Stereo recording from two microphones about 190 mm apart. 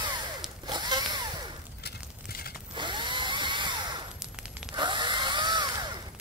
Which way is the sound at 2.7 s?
25° right (ahead or behind).